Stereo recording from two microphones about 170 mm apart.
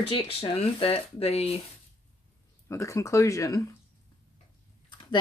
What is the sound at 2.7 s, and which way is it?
Speech, 15° left (ahead or behind).